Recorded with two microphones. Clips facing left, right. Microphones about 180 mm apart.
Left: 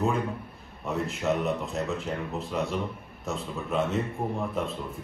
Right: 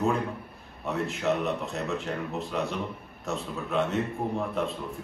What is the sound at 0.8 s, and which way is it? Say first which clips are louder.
A man's voice: even; centre (ahead or behind).